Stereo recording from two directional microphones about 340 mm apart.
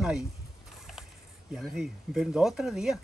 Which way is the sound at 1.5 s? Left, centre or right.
Centre.